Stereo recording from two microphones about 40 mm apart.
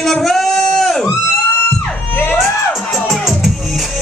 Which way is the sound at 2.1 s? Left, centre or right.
Left.